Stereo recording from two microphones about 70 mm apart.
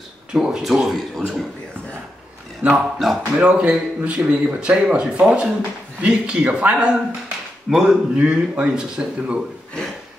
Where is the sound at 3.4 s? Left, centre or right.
Centre.